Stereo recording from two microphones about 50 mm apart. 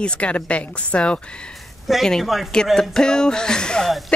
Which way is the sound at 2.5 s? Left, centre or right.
Centre.